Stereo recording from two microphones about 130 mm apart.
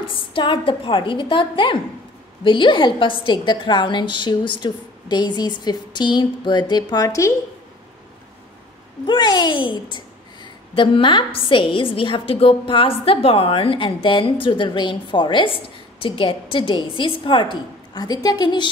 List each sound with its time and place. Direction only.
0.1 s a woman's voice: 40° left (ahead or behind); by 7.3 s 25° left (ahead or behind)
9.0 s a child's voice: 35° left (ahead or behind)